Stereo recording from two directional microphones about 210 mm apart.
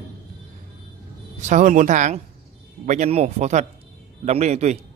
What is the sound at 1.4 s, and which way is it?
Speech, 35° right (ahead or behind).